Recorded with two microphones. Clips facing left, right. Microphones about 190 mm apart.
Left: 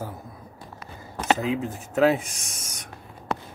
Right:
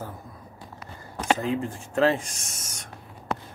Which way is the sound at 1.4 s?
10° left (ahead or behind).